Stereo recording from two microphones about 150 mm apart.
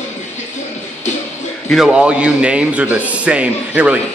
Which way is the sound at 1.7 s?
5° right (ahead or behind).